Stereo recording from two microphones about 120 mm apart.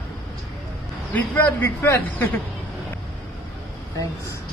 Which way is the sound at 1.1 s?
15° left (ahead or behind).